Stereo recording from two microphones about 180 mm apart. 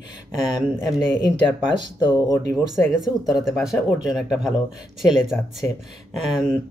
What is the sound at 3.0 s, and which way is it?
Speech, centre (ahead or behind).